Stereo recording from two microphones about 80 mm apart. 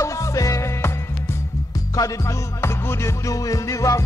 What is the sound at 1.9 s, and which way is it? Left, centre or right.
Music, left.